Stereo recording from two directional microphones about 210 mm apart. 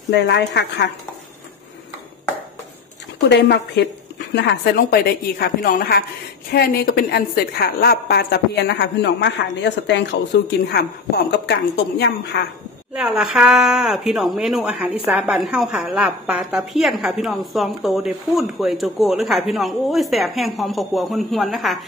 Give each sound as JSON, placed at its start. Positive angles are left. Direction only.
{"t": 0.1, "sound": "a woman's voice", "side_deg": 55}
{"t": 3.2, "sound": "a woman's voice", "side_deg": 55}
{"t": 12.9, "sound": "speech", "side_deg": -5}